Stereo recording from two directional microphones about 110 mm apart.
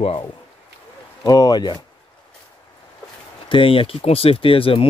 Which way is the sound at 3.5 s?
55° left (ahead or behind).